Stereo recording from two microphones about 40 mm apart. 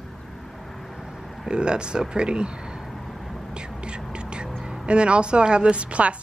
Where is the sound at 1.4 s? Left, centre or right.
Right.